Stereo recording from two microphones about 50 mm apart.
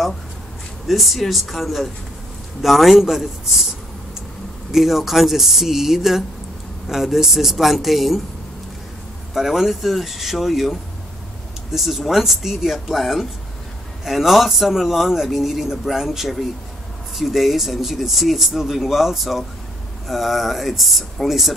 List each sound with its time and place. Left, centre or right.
0.8 s a man's voice: centre
4.7 s a man's voice: centre
9.3 s a man's voice: centre